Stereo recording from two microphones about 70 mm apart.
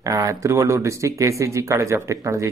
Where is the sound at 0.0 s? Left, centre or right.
Right.